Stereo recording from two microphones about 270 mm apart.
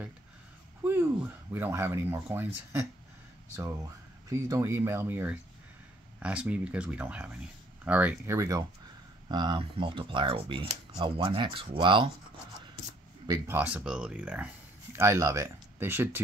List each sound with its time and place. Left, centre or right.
0.8 s speech: centre
13.3 s speech: centre